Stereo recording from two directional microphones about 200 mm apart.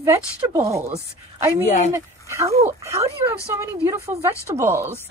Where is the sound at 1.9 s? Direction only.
15° right (ahead or behind).